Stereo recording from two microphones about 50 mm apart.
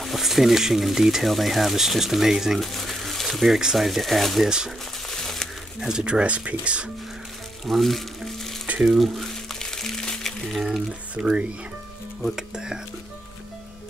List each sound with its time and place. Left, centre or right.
0.0 s speech: centre
4.5 s speech: centre
5.0 s crumpling: centre
5.8 s speech: centre
7.6 s frying: centre
8.8 s crumpling: centre
10.5 s speech: centre
11.1 s speech: right